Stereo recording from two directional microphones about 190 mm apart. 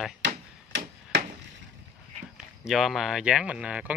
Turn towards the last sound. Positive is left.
turn(degrees=-5)  # may be behind; listen again after turning